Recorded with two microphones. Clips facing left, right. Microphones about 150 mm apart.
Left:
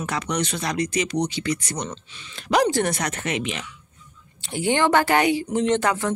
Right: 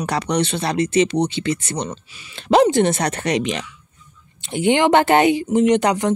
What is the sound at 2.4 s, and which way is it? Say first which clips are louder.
Speech: right 6 dB; 25° right (ahead or behind).